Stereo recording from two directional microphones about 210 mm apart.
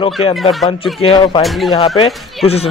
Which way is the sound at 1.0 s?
25° left (ahead or behind).